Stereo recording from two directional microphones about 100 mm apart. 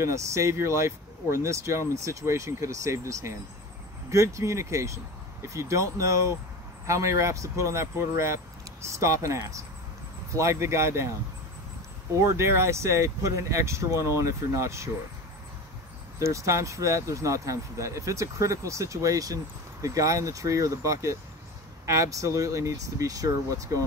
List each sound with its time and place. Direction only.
0.0 s speech: 30° right (ahead or behind)
12.2 s speech: 25° right (ahead or behind)
16.2 s speech: 30° right (ahead or behind)